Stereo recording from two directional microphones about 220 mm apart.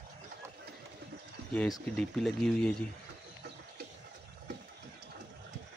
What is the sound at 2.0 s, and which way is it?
Speech, centre (ahead or behind).